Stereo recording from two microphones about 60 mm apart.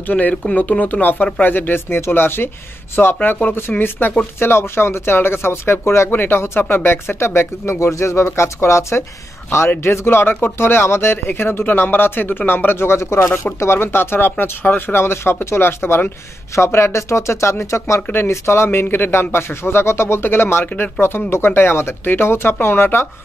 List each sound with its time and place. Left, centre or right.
0.0 s speech: left
6.0 s speech: left
16.5 s speech: left
18.0 s speech: left
18.3 s speech: left